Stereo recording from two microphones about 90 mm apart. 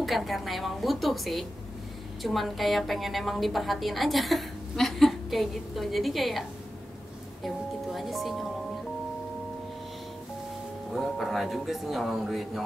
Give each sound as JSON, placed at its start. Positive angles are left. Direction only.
{"t": 0.0, "sound": "a woman's voice", "side_deg": 0}
{"t": 7.4, "sound": "speech", "side_deg": 0}
{"t": 10.9, "sound": "a woman's voice", "side_deg": 0}